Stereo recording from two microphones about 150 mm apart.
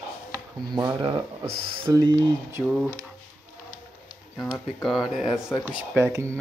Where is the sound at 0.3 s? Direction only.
25° right (ahead or behind).